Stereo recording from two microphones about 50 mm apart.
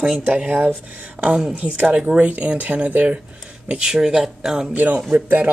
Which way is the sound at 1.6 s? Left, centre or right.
Right.